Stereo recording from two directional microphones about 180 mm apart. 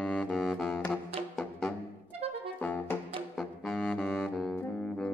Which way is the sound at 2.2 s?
35° right (ahead or behind).